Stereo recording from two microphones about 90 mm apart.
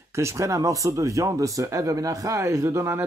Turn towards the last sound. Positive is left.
turn(degrees=-30)  # may be behind; listen again after turning